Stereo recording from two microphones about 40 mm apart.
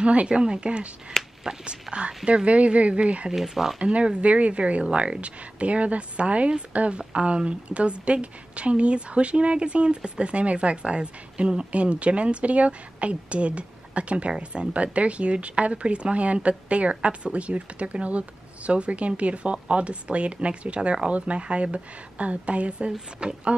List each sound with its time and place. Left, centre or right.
0.0 s a woman's voice: right
3.3 s speech: centre
3.8 s a woman's voice: right